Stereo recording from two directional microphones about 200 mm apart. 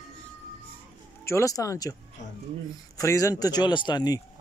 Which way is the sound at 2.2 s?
40° left (ahead or behind).